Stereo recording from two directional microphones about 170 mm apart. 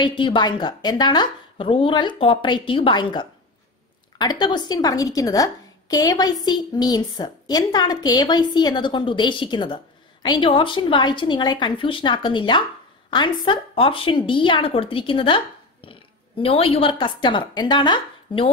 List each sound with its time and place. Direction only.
0.0 s a woman's voice: 30° left (ahead or behind)